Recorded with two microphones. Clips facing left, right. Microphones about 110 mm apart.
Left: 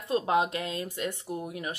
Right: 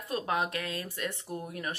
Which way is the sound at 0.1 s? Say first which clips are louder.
Left 5 dB; 25° left (ahead or behind).